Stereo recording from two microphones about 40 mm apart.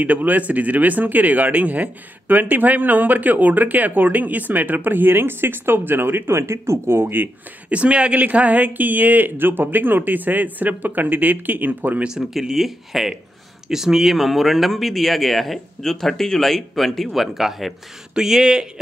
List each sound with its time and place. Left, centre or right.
0.0 s speech: right
7.7 s speech: right
12.1 s speech: centre